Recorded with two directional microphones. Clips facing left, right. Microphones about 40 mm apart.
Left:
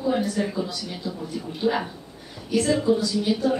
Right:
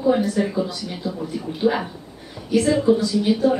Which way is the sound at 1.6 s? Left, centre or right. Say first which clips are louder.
Right 3 dB; centre.